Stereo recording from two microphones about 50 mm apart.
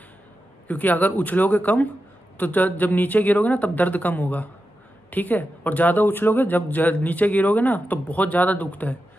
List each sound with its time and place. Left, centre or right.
0.7 s speech: left